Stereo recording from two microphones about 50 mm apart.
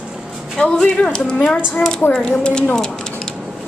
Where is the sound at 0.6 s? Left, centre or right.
Centre.